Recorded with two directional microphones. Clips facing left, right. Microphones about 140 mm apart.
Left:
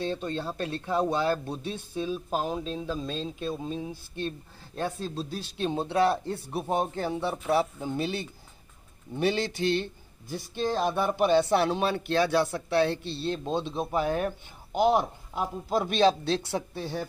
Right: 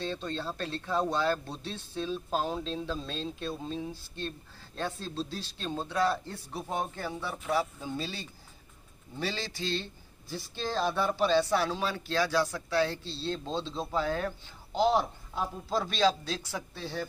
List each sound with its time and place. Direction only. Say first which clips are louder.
0.1 s speech: left 3 dB; 15° left (ahead or behind)
6.0 s speech: left 4 dB; 65° left (ahead or behind)
6.7 s speech: left 6 dB; 20° left (ahead or behind)
8.0 s speech: left 7 dB; 55° left (ahead or behind)
9.1 s speech: left 8 dB; 20° left (ahead or behind)
10.2 s speech: left 3 dB; 50° left (ahead or behind)
10.6 s speech: left 3 dB; 15° left (ahead or behind)
11.8 s speech: left 5 dB; 60° left (ahead or behind)
12.5 s speech: left 4 dB; 25° left (ahead or behind)
12.9 s speech: left 5 dB; 60° left (ahead or behind)
13.3 s speech: left 4 dB; 15° left (ahead or behind)